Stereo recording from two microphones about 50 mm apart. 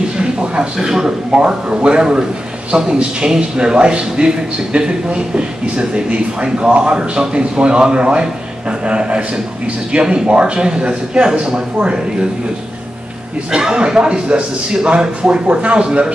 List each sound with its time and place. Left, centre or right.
0.2 s a sound: centre
0.7 s a man's voice: centre
13.5 s a man's voice: centre